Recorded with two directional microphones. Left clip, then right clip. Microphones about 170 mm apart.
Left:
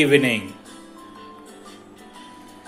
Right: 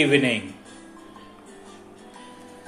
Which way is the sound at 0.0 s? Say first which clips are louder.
Left 3 dB; 25° left (ahead or behind).